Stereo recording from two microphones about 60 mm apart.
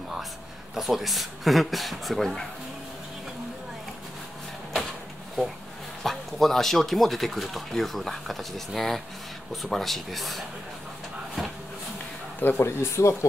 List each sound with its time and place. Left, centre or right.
0.7 s speech: centre
6.0 s speech: centre
12.4 s speech: left